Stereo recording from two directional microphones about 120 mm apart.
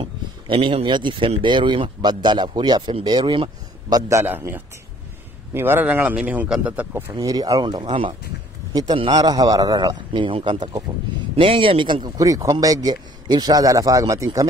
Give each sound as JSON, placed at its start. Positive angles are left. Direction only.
{"t": 0.0, "sound": "speech", "side_deg": -45}
{"t": 3.9, "sound": "a man's voice", "side_deg": -25}
{"t": 7.2, "sound": "speech", "side_deg": -35}
{"t": 7.8, "sound": "speech", "side_deg": -50}
{"t": 9.1, "sound": "speech", "side_deg": -35}